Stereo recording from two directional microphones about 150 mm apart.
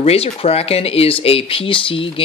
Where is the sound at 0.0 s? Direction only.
40° left (ahead or behind).